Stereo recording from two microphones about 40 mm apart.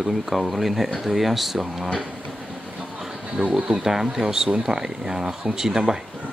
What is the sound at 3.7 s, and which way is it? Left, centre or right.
Speech, centre.